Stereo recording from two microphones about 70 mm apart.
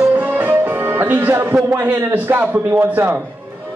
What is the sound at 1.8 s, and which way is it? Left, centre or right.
A man's voice, right.